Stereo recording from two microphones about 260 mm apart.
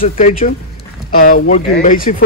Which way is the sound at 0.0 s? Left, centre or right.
Left.